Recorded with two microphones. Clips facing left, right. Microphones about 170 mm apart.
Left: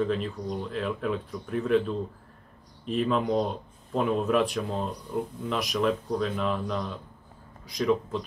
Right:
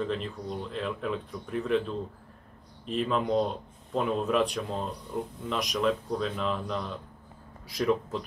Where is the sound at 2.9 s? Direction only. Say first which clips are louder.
Left 2 dB; centre (ahead or behind).